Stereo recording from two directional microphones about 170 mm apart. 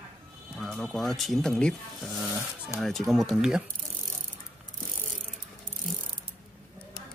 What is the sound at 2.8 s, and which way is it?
Speech, centre (ahead or behind).